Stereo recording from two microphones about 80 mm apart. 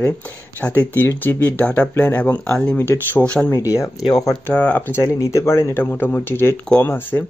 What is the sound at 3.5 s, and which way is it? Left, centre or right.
Speech, left.